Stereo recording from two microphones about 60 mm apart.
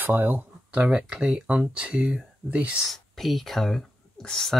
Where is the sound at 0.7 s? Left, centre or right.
Right.